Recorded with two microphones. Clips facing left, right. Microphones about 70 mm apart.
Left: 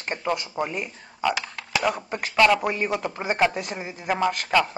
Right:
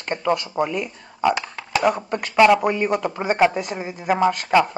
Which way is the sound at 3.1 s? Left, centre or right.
Right.